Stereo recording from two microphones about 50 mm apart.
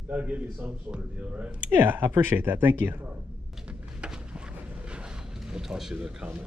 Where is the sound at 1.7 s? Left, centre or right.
Right.